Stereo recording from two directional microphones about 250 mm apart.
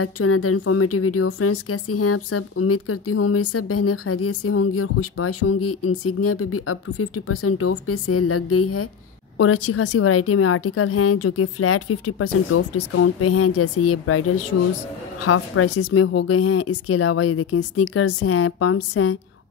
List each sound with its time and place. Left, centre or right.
0.0 s speech: left
15.8 s speech: left